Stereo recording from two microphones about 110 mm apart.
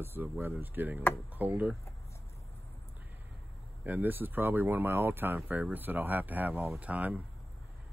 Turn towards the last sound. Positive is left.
turn(degrees=-15)  # may be behind; listen again after turning